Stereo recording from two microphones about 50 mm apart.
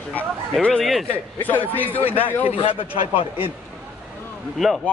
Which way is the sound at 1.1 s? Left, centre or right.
Left.